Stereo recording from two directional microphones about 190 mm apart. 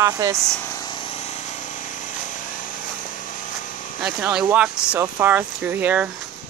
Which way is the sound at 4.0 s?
5° right (ahead or behind).